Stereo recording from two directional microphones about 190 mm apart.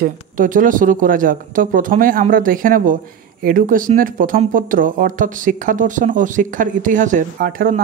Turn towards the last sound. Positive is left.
turn(degrees=-45)  # may be behind; listen again after turning